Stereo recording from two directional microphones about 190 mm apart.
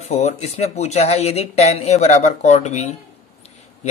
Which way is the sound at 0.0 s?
35° left (ahead or behind).